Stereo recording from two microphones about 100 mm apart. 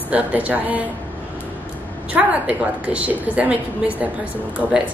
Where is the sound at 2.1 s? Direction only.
15° right (ahead or behind).